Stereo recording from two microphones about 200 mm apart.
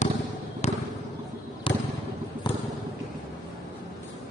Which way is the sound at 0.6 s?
35° left (ahead or behind).